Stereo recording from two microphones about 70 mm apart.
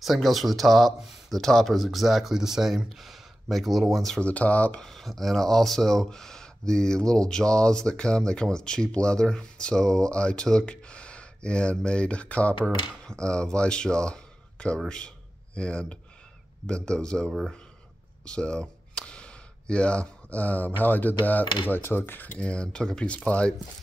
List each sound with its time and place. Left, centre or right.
0.0 s speech: centre
4.2 s speech: left
4.8 s speech: centre
18.2 s a sound: centre
20.8 s speech: left